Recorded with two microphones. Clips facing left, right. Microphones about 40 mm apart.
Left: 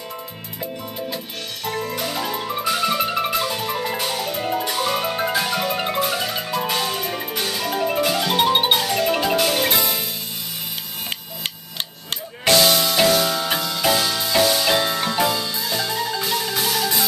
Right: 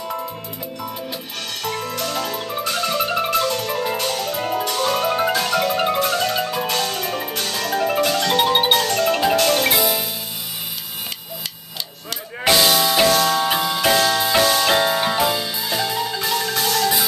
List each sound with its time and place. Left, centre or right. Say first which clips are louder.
1.6 s music: even; right
2.0 s music: right 1 dB; centre
4.4 s music: even; centre
4.6 s music: right 2 dB; centre
12.4 s music: right 1 dB; centre
13.1 s music: right 2 dB; centre
13.4 s music: right 3 dB; centre
14.4 s music: left 1 dB; centre
14.7 s music: right 3 dB; right; by 17.0 s centre